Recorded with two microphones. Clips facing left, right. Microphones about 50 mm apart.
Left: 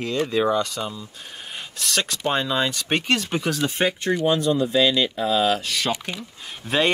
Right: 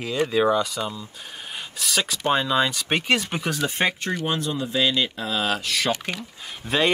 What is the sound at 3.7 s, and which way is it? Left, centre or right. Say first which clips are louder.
Speech: left 1 dB; right.